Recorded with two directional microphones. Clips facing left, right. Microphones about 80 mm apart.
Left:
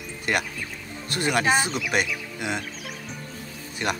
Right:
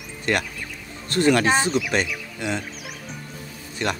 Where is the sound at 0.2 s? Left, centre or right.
Centre.